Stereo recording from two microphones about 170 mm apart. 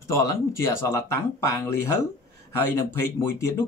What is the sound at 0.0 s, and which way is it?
A man's voice, 20° left (ahead or behind).